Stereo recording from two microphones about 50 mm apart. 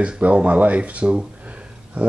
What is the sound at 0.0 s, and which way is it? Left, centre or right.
Speech, right.